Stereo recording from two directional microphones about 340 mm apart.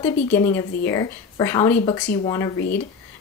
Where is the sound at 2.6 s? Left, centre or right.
Left.